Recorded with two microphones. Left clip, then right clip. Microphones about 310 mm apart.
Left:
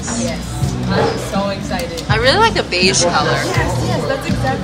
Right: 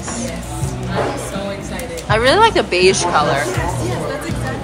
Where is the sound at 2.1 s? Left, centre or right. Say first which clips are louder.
Right 1 dB; centre.